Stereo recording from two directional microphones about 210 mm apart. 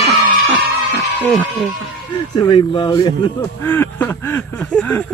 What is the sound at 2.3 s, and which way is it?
Speech, 20° left (ahead or behind).